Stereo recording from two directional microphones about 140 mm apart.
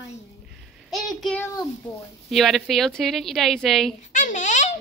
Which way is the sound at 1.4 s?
20° left (ahead or behind).